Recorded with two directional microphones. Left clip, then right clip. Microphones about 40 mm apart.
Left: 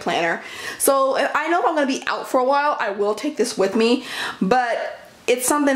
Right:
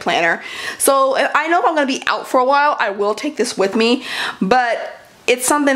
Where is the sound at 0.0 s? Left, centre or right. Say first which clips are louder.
Right 5 dB; right.